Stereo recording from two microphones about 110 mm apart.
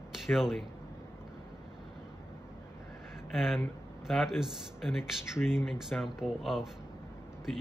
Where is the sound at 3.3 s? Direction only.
Centre (ahead or behind).